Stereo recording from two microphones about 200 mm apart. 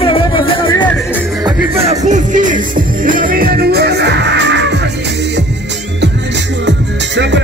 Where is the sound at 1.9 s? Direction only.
35° right (ahead or behind); by 4.7 s 60° right (ahead or behind).